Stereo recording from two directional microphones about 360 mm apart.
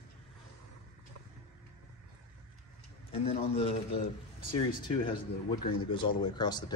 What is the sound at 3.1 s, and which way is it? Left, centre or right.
Speech, centre.